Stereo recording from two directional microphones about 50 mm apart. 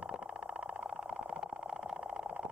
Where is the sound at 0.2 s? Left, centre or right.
Right.